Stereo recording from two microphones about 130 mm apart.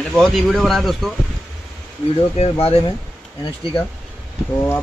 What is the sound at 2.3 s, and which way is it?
Speech, 50° left (ahead or behind).